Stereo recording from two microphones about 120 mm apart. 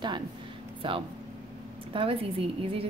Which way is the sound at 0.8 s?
45° right (ahead or behind).